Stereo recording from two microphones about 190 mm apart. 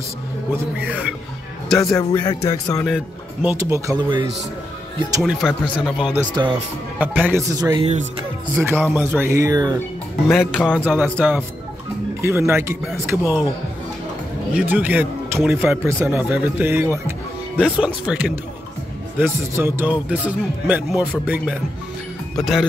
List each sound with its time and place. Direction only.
0.7 s speech: 10° right (ahead or behind)
1.8 s a man's voice: 15° left (ahead or behind)
3.4 s speech: 15° right (ahead or behind)
5.2 s speech: centre (ahead or behind)
6.3 s speech: 25° right (ahead or behind)
7.0 s speech: 10° right (ahead or behind)
7.8 s music: 35° right (ahead or behind)
8.5 s speech: 10° right (ahead or behind)
10.2 s speech: centre (ahead or behind)
11.0 s speech: 10° right (ahead or behind)
14.5 s speech: 10° right (ahead or behind)
22.4 s speech: centre (ahead or behind)